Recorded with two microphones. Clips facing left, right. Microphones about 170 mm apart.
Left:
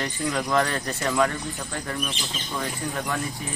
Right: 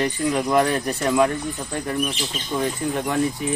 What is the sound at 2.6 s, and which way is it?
Speech, 25° right (ahead or behind).